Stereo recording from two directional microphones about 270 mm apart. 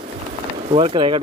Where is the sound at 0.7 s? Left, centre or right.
Centre.